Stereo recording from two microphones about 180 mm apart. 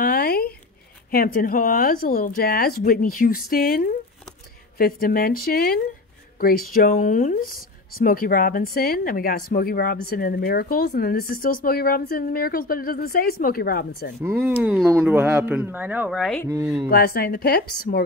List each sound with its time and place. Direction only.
0.0 s zipper: 55° left (ahead or behind)
1.1 s a woman's voice: 50° left (ahead or behind)
14.2 s speech: 10° right (ahead or behind)
16.4 s speech: 15° right (ahead or behind)
16.9 s a woman's voice: 60° left (ahead or behind)